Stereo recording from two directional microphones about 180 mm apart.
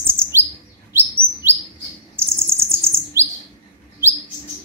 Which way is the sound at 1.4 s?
10° right (ahead or behind).